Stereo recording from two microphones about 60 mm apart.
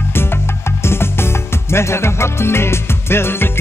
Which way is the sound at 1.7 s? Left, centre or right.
Left.